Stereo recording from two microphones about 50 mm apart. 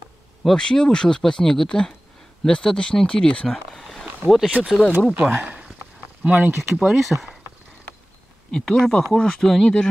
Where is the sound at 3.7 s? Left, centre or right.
Centre.